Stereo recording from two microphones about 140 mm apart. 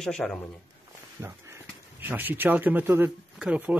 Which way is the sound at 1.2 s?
15° right (ahead or behind).